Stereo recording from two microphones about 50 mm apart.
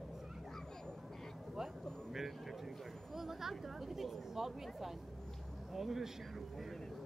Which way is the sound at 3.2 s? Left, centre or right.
Centre.